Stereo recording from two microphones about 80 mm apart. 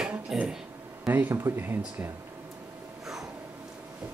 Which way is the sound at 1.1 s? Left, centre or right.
Right.